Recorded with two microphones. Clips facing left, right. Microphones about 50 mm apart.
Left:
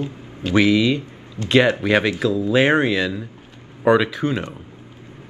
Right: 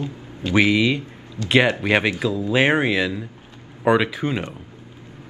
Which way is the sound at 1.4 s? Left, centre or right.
Left.